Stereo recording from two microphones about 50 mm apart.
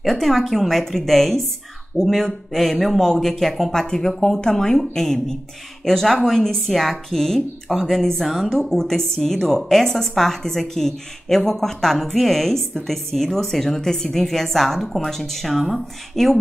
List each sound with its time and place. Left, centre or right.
0.0 s a woman's voice: centre